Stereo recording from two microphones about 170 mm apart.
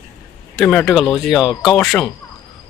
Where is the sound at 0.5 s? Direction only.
Centre (ahead or behind).